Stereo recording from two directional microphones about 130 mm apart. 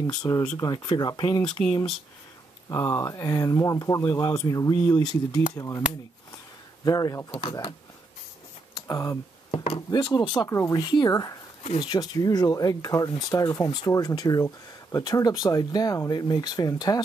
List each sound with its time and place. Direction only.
0.0 s speech: 30° left (ahead or behind)
2.7 s speech: 20° left (ahead or behind)
6.8 s speech: 30° left (ahead or behind)
8.7 s speech: 25° left (ahead or behind)
9.5 s speech: 55° left (ahead or behind)
9.8 s speech: 30° left (ahead or behind)